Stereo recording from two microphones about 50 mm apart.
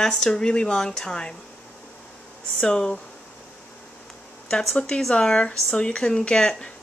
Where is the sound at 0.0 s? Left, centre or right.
Centre.